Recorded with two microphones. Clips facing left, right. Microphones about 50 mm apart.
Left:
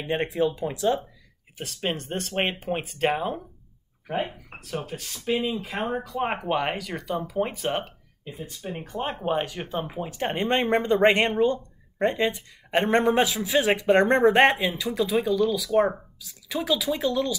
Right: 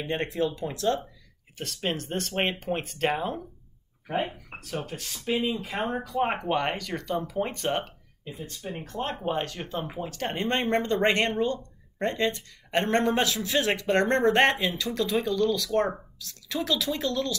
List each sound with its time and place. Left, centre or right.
0.0 s speech: centre